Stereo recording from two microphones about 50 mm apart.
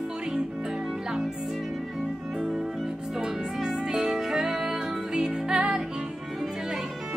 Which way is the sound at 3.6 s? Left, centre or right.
Centre.